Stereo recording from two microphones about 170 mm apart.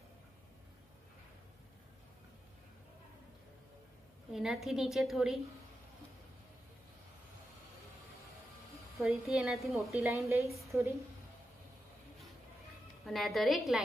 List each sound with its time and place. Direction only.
4.3 s a woman's voice: centre (ahead or behind)
9.0 s a woman's voice: centre (ahead or behind)
10.6 s a woman's voice: 15° right (ahead or behind)
13.0 s a woman's voice: centre (ahead or behind)